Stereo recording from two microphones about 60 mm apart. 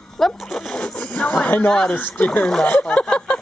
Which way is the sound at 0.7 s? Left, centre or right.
Centre.